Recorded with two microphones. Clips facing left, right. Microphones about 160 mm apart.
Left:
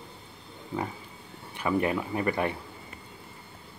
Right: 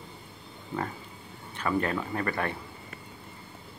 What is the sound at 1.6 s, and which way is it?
Speech, 15° left (ahead or behind).